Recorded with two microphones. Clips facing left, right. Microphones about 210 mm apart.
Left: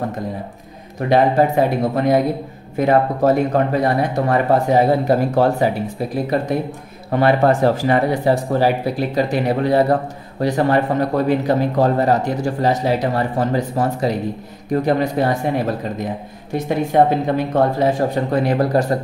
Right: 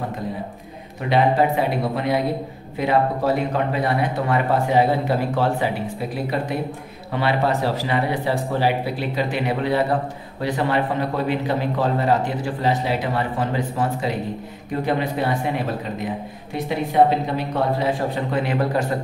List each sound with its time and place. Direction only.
1.0 s a man's voice: 45° left (ahead or behind)
7.1 s a man's voice: 45° left (ahead or behind)